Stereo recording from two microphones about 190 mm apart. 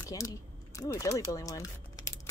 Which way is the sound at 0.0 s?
20° left (ahead or behind).